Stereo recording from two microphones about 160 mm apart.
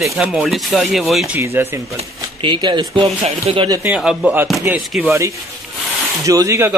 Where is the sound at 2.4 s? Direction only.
30° right (ahead or behind).